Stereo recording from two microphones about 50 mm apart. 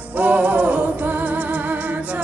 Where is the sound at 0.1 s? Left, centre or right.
Right.